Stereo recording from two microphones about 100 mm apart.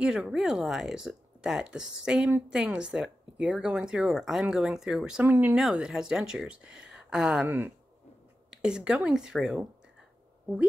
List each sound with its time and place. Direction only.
0.0 s speech: 5° right (ahead or behind)
5.2 s speech: 20° right (ahead or behind)
5.6 s speech: 5° right (ahead or behind)
7.4 s speech: 20° right (ahead or behind)
8.5 s speech: 5° right (ahead or behind)